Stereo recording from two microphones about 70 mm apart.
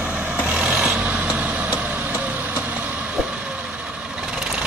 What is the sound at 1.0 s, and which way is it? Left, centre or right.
Vehicle, centre.